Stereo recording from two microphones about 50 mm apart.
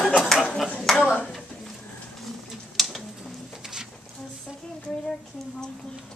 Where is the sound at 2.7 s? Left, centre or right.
Centre.